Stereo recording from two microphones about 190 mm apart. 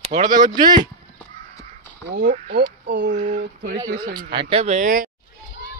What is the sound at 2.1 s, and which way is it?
Speech, 40° right (ahead or behind).